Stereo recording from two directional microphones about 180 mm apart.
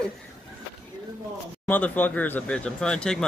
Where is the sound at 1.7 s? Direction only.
10° left (ahead or behind).